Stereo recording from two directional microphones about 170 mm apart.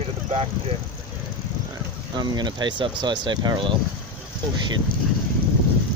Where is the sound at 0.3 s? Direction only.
35° right (ahead or behind).